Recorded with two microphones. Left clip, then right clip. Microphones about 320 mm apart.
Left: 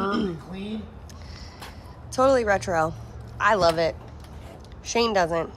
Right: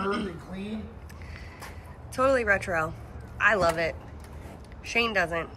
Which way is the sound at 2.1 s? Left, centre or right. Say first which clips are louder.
Left 3 dB; centre.